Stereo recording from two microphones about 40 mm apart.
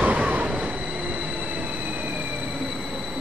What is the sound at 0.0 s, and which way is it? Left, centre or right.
Train, right.